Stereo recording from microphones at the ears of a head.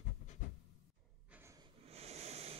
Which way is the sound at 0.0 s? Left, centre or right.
Left.